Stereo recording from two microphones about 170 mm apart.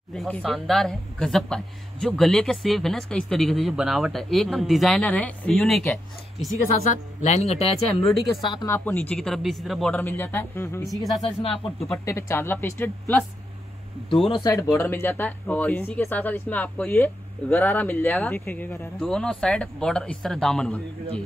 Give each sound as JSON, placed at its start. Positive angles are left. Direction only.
{"t": 0.1, "sound": "speech", "side_deg": 5}
{"t": 6.5, "sound": "speech", "side_deg": 45}
{"t": 8.0, "sound": "speech", "side_deg": 0}
{"t": 8.6, "sound": "speech", "side_deg": 10}
{"t": 10.9, "sound": "speech", "side_deg": 0}
{"t": 11.9, "sound": "speech", "side_deg": 15}
{"t": 14.2, "sound": "speech", "side_deg": 30}
{"t": 14.5, "sound": "speech", "side_deg": 15}